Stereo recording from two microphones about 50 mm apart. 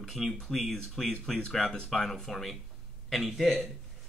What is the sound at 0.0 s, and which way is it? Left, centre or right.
Speech, centre.